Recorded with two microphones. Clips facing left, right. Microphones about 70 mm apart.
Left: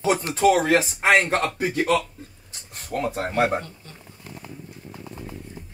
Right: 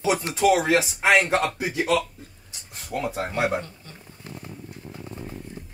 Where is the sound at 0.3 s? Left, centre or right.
Left.